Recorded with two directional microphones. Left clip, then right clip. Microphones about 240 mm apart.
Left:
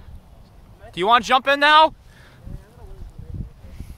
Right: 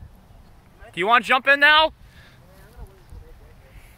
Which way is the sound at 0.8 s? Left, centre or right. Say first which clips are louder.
Left 1 dB; centre.